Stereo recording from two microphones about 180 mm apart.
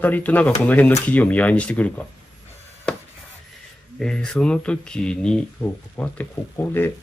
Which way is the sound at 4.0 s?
5° left (ahead or behind).